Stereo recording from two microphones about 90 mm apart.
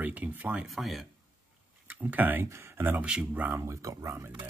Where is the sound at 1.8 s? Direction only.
20° right (ahead or behind).